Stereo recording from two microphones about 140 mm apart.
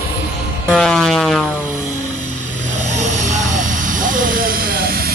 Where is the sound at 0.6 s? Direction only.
Centre (ahead or behind).